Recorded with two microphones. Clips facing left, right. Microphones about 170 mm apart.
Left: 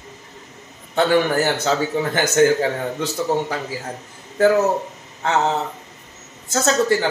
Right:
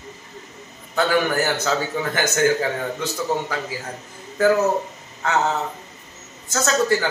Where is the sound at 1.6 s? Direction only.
30° left (ahead or behind).